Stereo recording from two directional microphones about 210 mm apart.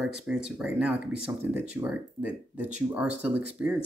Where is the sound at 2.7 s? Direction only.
5° right (ahead or behind).